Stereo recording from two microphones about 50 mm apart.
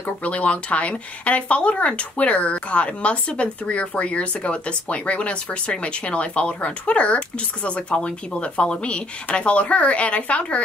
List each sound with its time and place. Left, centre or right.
0.0 s speech: left